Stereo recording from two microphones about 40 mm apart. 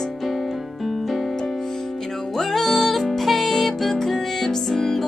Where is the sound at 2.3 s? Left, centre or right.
Centre.